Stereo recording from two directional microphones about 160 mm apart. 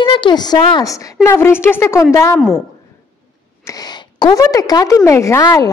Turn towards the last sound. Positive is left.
turn(degrees=20)  # may be behind; listen again after turning